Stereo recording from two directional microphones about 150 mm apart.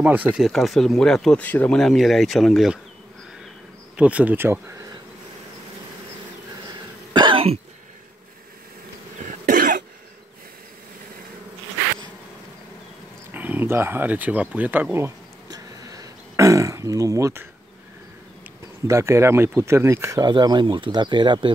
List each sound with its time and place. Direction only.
0.0 s speech: 10° right (ahead or behind)
0.5 s speech: centre (ahead or behind)
3.9 s speech: 10° right (ahead or behind)
7.2 s cough: 35° right (ahead or behind)
9.2 s cough: 60° right (ahead or behind)
13.3 s speech: 10° right (ahead or behind)
18.9 s speech: 20° right (ahead or behind)